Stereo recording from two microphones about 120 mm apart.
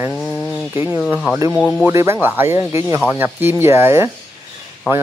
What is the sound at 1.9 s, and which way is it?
Speech, 25° right (ahead or behind).